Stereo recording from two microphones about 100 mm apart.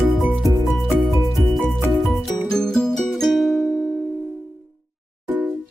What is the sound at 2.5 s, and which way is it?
Music, 5° left (ahead or behind).